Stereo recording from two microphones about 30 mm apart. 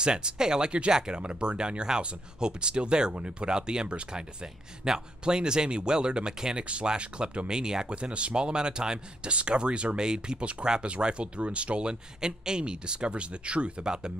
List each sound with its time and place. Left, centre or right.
0.0 s speech: right
7.0 s speech: right
7.4 s speech: right
7.9 s speech: right
9.9 s speech: right
11.4 s speech: right